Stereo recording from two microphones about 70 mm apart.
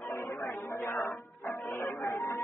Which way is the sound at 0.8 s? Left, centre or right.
Left.